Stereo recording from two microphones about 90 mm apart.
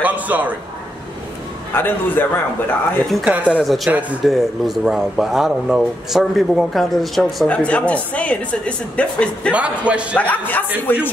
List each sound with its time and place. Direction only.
0.0 s a sound: 20° right (ahead or behind)
1.7 s a man's voice: 20° left (ahead or behind)
3.3 s speech: 15° right (ahead or behind)
3.6 s speech: centre (ahead or behind)
7.4 s speech: 15° left (ahead or behind)
9.5 s speech: 15° right (ahead or behind)
10.1 s a man's voice: 20° left (ahead or behind)